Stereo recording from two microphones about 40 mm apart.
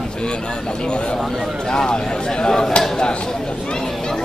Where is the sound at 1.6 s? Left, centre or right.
Centre.